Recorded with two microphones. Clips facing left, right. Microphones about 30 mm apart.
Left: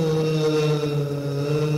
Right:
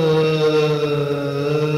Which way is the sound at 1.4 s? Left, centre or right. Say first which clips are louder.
Right 3 dB; right.